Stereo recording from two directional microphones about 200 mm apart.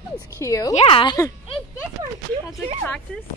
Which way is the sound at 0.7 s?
30° left (ahead or behind).